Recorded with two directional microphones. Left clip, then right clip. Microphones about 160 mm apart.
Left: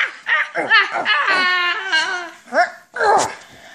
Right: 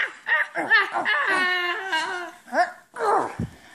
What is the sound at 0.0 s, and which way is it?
Baby laughter, 45° right (ahead or behind).